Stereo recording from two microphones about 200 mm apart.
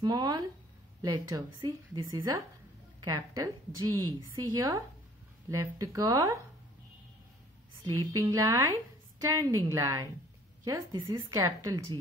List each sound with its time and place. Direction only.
0.0 s a woman's voice: 20° right (ahead or behind)
7.8 s a woman's voice: 15° right (ahead or behind)